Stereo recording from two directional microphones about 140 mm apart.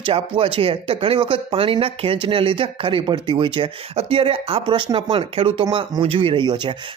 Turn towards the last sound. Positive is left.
turn(degrees=-35)  # may be behind; listen again after turning